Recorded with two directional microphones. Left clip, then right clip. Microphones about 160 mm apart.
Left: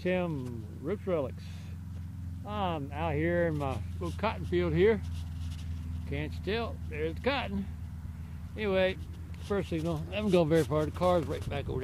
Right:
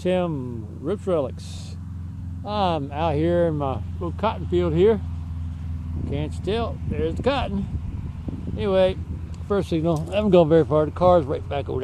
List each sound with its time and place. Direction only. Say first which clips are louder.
0.0 s speech: right 8 dB; centre (ahead or behind)
2.4 s speech: right 11 dB; 20° right (ahead or behind); by 5.0 s 5° left (ahead or behind)
6.0 s speech: right 8 dB; centre (ahead or behind)
9.6 s speech: right 13 dB; 25° right (ahead or behind)
10.2 s speech: right 10 dB; 5° right (ahead or behind)